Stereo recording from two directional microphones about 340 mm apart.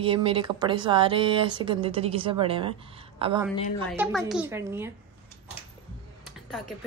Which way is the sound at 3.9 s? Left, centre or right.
Centre.